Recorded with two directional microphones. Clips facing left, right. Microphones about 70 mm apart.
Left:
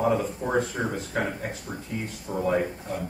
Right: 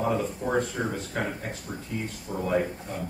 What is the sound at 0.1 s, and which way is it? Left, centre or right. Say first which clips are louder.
Speech: left 1 dB; centre.